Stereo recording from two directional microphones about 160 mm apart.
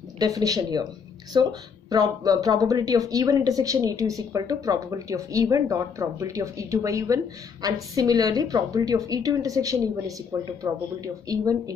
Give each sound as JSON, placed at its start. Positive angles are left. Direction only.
{"t": 0.2, "sound": "speech", "side_deg": -20}